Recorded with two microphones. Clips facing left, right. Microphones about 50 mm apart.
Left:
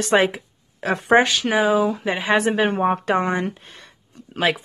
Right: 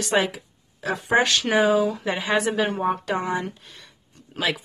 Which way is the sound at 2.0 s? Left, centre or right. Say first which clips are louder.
Left 3 dB; left.